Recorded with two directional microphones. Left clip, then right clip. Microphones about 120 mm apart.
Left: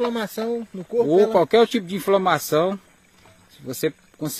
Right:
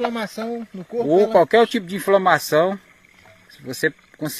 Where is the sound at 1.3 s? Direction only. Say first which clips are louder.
Right 2 dB; 10° left (ahead or behind).